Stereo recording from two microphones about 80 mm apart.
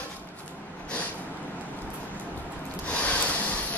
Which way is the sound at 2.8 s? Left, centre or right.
Centre.